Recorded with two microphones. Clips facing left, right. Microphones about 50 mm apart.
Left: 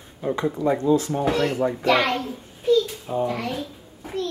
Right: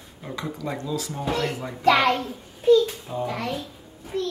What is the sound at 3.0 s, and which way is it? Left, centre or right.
Speech, centre.